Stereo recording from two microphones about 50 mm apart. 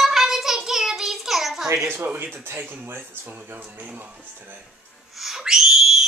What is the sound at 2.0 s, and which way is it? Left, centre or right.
Speech, right.